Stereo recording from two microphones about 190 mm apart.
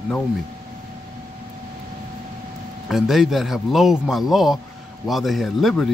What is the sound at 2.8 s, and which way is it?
Speech, centre (ahead or behind).